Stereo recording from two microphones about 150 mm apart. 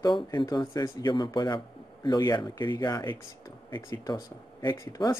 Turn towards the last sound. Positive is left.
turn(degrees=20)  # may be behind; listen again after turning